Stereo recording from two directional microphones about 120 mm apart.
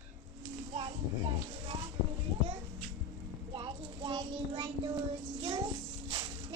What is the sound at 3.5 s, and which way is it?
Child singing, 40° right (ahead or behind).